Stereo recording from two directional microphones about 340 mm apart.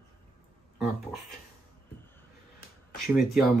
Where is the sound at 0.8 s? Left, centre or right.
Centre.